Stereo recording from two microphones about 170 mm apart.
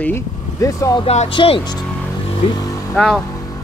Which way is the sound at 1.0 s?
40° left (ahead or behind).